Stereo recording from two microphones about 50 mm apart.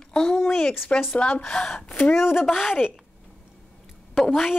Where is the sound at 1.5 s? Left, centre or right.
Centre.